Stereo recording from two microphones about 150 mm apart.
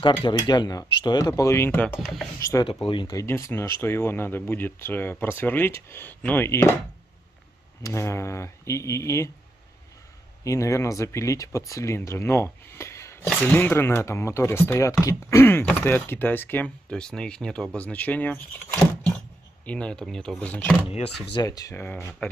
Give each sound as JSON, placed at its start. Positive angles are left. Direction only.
{"t": 0.2, "sound": "speech", "side_deg": 30}
{"t": 2.6, "sound": "speech", "side_deg": 35}
{"t": 7.8, "sound": "speech", "side_deg": 20}
{"t": 10.4, "sound": "speech", "side_deg": 20}
{"t": 19.6, "sound": "speech", "side_deg": 10}
{"t": 21.4, "sound": "speech", "side_deg": 25}
{"t": 22.2, "sound": "speech", "side_deg": 10}